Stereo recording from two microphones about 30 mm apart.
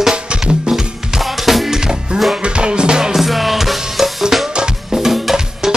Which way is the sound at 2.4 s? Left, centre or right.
Right.